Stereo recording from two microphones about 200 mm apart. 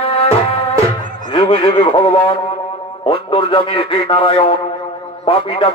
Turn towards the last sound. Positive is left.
turn(degrees=25)  # may be behind; listen again after turning